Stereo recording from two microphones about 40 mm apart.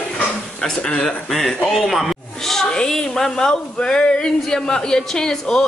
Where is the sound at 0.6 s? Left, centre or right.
Centre.